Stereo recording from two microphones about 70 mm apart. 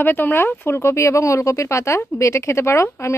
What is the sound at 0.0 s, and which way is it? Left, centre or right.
A woman's voice, left.